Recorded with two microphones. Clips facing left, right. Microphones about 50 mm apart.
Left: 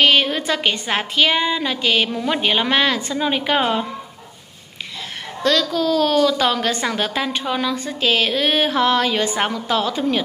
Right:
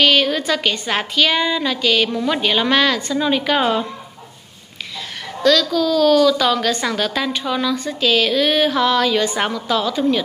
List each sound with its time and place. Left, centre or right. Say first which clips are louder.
0.0 s a sound: right 1 dB; left
0.5 s a woman's voice: right 1 dB; left
1.7 s a woman's voice: right 2 dB; left
5.4 s a woman's voice: right 3 dB; left